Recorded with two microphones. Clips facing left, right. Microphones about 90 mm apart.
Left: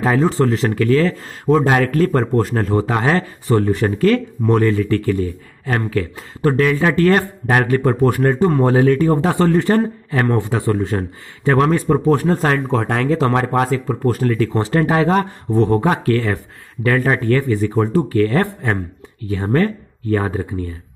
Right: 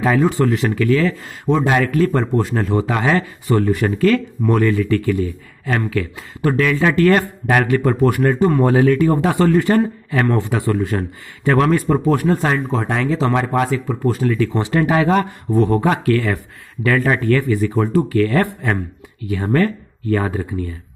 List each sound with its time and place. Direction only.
0.0 s speech: 35° left (ahead or behind)
12.3 s speech: 45° left (ahead or behind)
12.5 s speech: 65° left (ahead or behind); by 20.7 s 25° left (ahead or behind)